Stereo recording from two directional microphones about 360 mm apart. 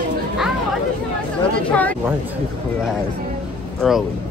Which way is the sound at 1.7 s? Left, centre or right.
Centre.